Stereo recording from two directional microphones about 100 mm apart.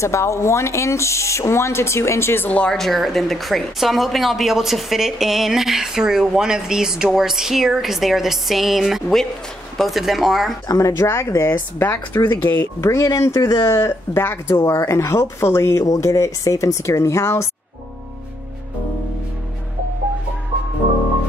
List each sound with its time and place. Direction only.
0.0 s speech: 30° left (ahead or behind); by 10.5 s centre (ahead or behind)
10.7 s speech: 30° left (ahead or behind)
12.8 s speech: 30° left (ahead or behind)